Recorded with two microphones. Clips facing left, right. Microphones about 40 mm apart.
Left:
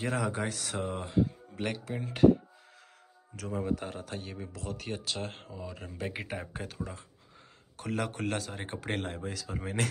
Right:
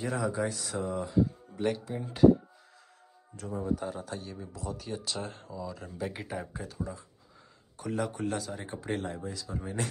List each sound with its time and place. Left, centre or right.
0.0 s speech: left
1.9 s speech: left
3.3 s speech: left
4.6 s speech: left
6.5 s speech: left
9.2 s speech: left